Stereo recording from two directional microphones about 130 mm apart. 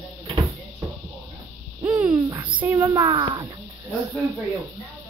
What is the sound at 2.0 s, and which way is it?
Speech, 25° right (ahead or behind).